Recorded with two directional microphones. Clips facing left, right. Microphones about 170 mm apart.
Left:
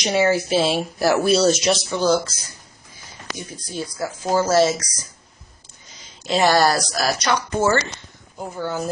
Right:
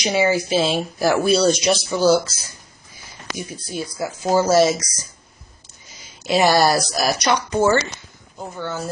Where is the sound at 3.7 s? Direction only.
10° right (ahead or behind).